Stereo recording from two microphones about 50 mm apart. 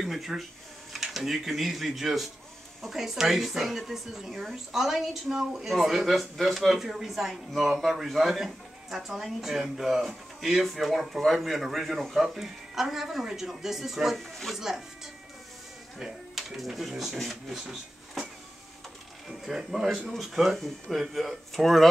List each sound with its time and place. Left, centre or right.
0.0 s speech: centre
16.0 s speech: centre
19.2 s speech: centre